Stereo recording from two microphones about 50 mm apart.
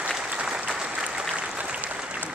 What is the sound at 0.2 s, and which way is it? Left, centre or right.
Applause, right.